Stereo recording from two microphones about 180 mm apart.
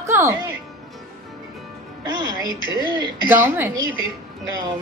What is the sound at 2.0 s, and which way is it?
Music, 20° right (ahead or behind).